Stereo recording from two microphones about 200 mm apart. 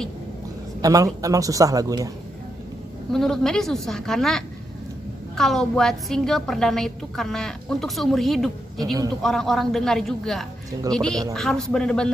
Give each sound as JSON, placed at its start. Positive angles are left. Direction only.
{"t": 0.7, "sound": "a man's voice", "side_deg": -15}
{"t": 3.1, "sound": "a woman's voice", "side_deg": 0}